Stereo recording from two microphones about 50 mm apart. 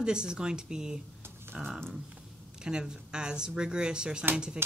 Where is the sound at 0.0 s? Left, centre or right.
Centre.